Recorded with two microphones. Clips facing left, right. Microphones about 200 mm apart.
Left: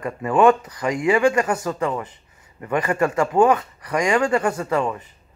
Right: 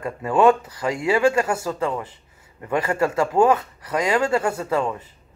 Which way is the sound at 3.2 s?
5° right (ahead or behind).